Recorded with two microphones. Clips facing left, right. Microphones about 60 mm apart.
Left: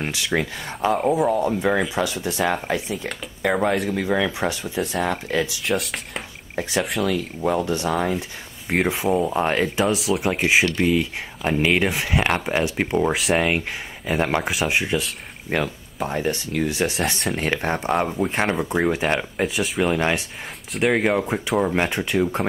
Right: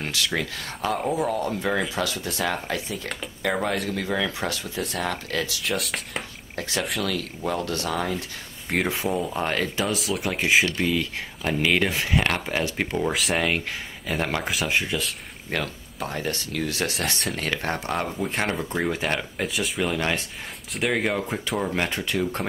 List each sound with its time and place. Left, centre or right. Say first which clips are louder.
0.1 s speech: left 3 dB; centre
3.4 s speech: left 5 dB; centre
5.6 s speech: left 3 dB; centre
6.5 s speech: left 5 dB; left
6.8 s speech: left 4 dB; centre
7.1 s speech: left 5 dB; centre
9.9 s speech: left 5 dB; centre
13.1 s speech: left 4 dB; centre
13.4 s speech: left 3 dB; centre
19.4 s speech: left 4 dB; centre
19.8 s speech: left 5 dB; centre